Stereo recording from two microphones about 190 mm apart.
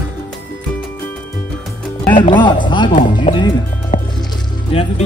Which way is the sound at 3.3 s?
40° left (ahead or behind).